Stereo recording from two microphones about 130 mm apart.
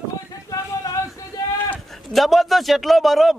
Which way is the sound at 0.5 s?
30° left (ahead or behind).